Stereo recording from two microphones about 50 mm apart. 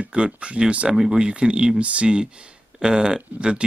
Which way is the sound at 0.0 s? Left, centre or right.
Right.